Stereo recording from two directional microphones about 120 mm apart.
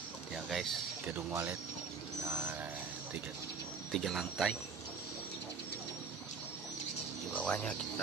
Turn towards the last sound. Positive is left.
turn(degrees=10)  # may be behind; listen again after turning